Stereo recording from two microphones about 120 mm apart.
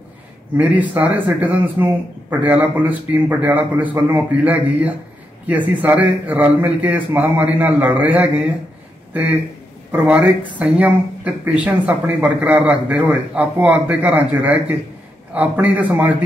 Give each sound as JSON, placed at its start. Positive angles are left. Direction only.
{"t": 0.6, "sound": "speech", "side_deg": -10}
{"t": 4.0, "sound": "a man's voice", "side_deg": -25}
{"t": 4.3, "sound": "speech", "side_deg": -10}